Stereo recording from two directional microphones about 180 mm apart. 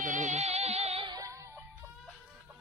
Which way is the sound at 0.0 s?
45° right (ahead or behind).